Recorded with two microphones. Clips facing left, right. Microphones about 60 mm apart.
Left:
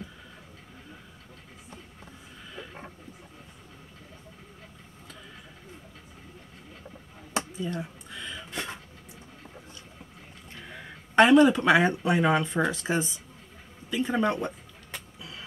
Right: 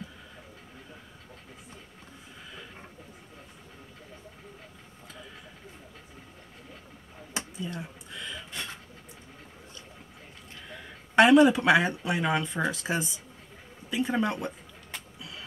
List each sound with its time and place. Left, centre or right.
7.6 s a sound: centre
11.1 s speech: centre
12.2 s speech: centre
12.6 s speech: centre
15.1 s vehicle: centre